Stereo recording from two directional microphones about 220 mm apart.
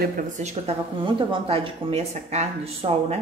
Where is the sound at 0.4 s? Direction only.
30° right (ahead or behind).